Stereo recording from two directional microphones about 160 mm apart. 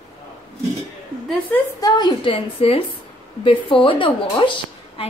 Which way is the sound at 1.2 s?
10° left (ahead or behind).